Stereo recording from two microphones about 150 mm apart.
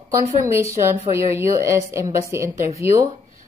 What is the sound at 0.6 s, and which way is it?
A woman's voice, 20° right (ahead or behind).